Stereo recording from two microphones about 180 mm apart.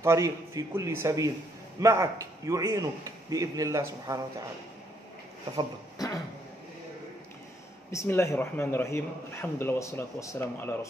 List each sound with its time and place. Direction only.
0.0 s a man's voice: 15° right (ahead or behind)
7.9 s a man's voice: 15° left (ahead or behind)